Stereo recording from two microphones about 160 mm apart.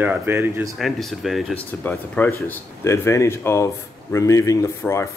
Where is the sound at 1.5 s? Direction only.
10° left (ahead or behind).